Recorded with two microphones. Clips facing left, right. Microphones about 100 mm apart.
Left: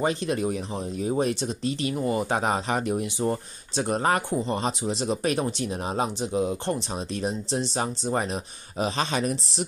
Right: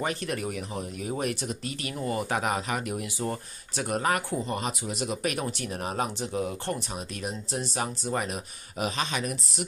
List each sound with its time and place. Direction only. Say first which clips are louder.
0.0 s speech: left 5 dB; 25° left (ahead or behind)